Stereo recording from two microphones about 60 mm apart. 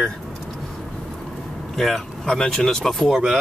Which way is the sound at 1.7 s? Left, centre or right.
Centre.